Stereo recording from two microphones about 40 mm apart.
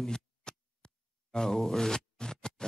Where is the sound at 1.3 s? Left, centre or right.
Centre.